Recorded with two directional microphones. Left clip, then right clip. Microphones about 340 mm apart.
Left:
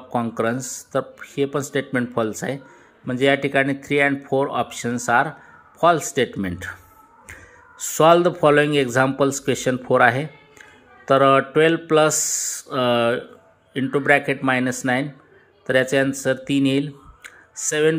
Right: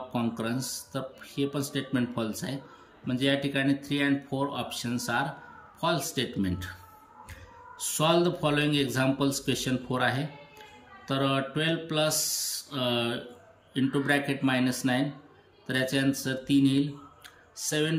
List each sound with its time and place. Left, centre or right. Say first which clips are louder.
0.1 s speech: left 11 dB; centre
7.8 s speech: left 11 dB; centre